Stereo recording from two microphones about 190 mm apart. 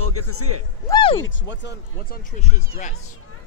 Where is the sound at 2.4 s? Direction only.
40° left (ahead or behind).